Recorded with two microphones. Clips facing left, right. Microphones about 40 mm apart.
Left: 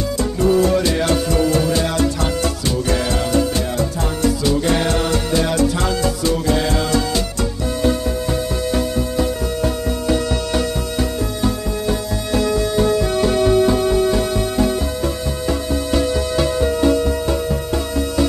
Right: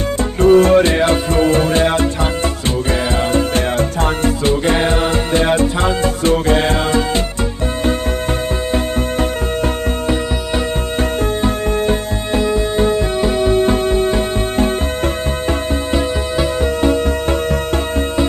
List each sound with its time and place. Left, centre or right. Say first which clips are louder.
0.4 s music: right 7 dB; right
3.5 s music: right 4 dB; right
12.4 s music: right 2 dB; right
13.7 s music: right 1 dB; right
15.9 s music: left 2 dB; right